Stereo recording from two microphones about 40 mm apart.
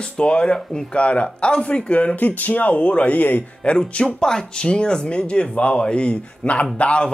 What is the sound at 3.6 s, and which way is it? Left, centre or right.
Speech, left.